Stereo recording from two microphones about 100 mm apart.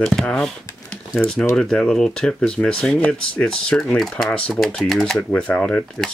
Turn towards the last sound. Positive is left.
turn(degrees=10)  # may be behind; listen again after turning